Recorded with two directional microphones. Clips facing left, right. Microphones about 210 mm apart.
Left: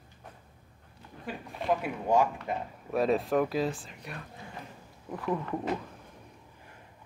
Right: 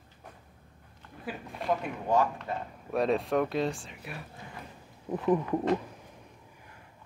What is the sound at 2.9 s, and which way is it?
Speech, centre (ahead or behind).